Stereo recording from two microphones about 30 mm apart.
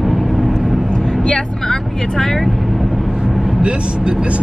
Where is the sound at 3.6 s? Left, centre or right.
Right.